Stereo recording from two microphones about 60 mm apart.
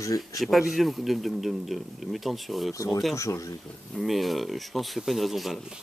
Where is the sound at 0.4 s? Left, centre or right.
Centre.